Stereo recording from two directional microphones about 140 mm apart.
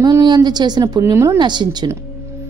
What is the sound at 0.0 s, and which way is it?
A woman's voice, 30° right (ahead or behind).